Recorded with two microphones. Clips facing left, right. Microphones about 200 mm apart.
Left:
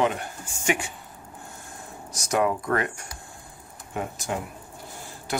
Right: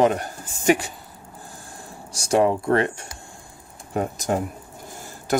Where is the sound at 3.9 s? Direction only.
40° right (ahead or behind).